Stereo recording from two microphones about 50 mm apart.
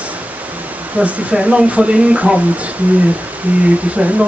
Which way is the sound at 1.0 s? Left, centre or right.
Right.